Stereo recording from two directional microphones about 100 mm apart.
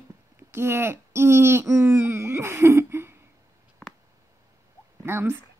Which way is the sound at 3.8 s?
5° left (ahead or behind).